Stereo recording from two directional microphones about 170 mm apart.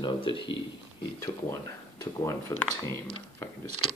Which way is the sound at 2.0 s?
15° left (ahead or behind).